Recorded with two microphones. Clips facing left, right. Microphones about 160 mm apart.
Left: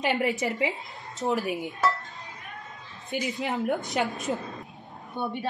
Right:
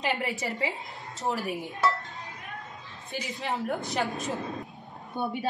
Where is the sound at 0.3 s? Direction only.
20° left (ahead or behind).